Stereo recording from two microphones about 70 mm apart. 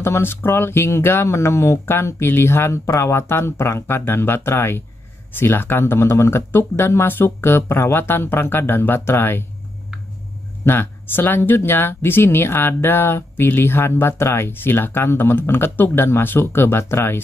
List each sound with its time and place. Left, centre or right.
0.0 s speech: left
10.6 s speech: left